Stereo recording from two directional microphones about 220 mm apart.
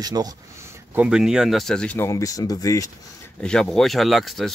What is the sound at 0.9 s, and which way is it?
Speech, 5° right (ahead or behind).